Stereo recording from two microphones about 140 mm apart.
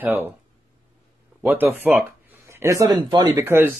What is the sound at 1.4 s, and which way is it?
Speech, 15° right (ahead or behind).